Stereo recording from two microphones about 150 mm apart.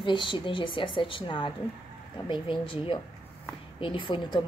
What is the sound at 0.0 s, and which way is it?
A woman's voice, 35° left (ahead or behind).